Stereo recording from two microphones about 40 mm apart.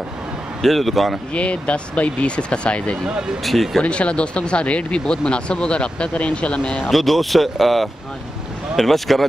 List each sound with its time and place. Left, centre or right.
0.6 s speech: centre
1.3 s speech: left
3.4 s speech: centre
3.8 s speech: left
6.9 s speech: centre